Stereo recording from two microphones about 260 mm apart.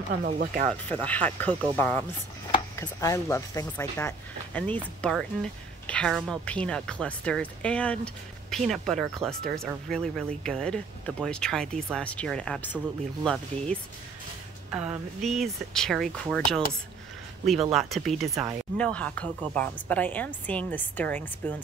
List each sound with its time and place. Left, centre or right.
0.2 s speech: right
0.8 s speech: centre
17.7 s speech: centre